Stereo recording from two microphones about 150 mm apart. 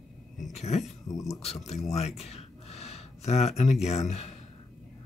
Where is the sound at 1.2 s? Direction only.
45° left (ahead or behind).